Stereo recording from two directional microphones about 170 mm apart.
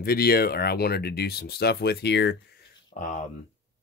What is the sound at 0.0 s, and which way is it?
Speech, 65° left (ahead or behind).